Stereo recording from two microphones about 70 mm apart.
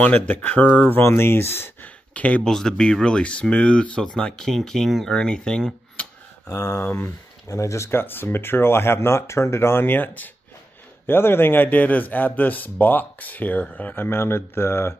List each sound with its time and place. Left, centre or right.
0.0 s a man's voice: left
2.1 s speech: left
2.4 s speech: centre
6.0 s tick-tock: left
6.5 s speech: left
6.8 s a man's voice: left
7.4 s a man's voice: left